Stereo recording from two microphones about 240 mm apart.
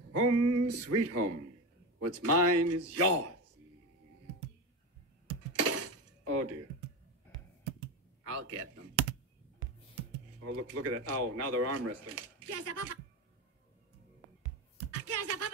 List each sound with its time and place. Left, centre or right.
0.1 s speech: right
5.6 s breaking: right
8.2 s a man's voice: right
10.4 s speech: right
14.8 s a sound: right